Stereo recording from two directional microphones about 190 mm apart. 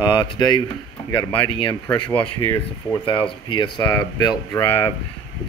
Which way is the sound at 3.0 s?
25° left (ahead or behind).